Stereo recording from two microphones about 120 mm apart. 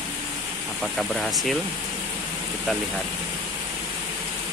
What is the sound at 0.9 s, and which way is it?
Speech, centre (ahead or behind).